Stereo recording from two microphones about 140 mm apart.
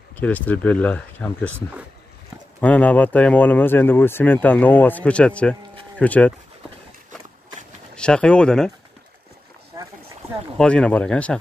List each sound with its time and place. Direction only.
0.2 s speech: 10° left (ahead or behind)
2.6 s speech: 10° left (ahead or behind)
7.9 s speech: 5° left (ahead or behind)
9.7 s boat: 25° right (ahead or behind)
10.6 s speech: 5° left (ahead or behind)